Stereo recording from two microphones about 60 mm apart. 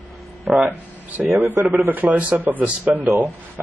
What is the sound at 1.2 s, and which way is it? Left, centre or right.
A man's voice, right.